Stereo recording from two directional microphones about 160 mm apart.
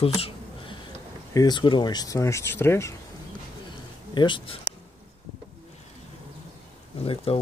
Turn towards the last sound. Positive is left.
turn(degrees=35)  # may be behind; listen again after turning